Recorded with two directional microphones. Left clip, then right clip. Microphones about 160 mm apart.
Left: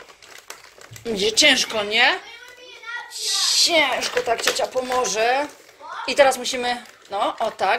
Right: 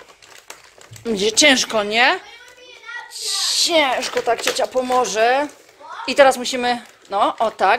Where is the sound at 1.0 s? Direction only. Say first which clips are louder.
Right 2 dB; 45° right (ahead or behind).